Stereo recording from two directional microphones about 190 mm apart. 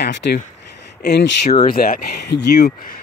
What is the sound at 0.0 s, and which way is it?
Speech, 65° left (ahead or behind).